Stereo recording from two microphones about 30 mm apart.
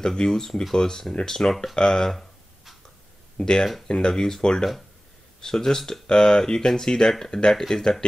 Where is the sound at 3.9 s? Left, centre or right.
Left.